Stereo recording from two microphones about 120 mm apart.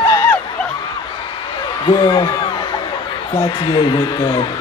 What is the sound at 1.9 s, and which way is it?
Speech, 40° left (ahead or behind).